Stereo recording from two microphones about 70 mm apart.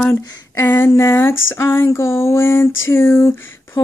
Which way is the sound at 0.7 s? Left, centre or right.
Left.